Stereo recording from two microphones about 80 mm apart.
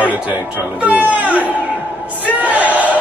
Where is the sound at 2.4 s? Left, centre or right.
Centre.